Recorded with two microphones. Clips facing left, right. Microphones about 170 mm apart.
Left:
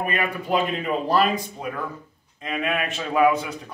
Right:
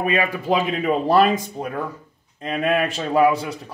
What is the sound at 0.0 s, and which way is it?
Speech, 90° right.